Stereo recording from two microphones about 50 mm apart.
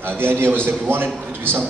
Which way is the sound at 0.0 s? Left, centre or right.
Right.